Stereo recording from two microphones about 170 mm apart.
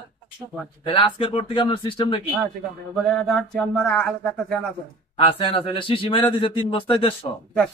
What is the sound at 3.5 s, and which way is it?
Speech, 5° left (ahead or behind).